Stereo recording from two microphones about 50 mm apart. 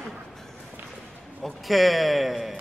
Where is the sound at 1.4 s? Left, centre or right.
Centre.